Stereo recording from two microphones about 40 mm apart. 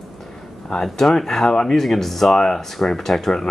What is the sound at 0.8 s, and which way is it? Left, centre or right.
A man's voice, centre.